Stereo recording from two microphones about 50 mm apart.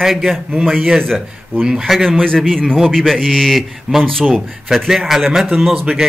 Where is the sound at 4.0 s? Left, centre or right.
Centre.